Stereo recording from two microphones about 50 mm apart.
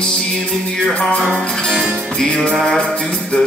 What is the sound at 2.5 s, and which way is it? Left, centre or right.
Mantra, centre.